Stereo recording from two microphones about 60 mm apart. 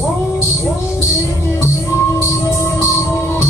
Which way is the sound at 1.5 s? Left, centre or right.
Left.